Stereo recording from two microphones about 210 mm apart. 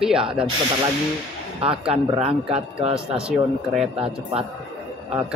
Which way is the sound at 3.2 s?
5° right (ahead or behind).